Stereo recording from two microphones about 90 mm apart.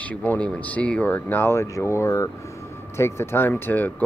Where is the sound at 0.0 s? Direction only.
15° left (ahead or behind).